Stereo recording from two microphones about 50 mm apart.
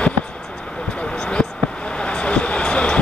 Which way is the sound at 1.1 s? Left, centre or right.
Centre.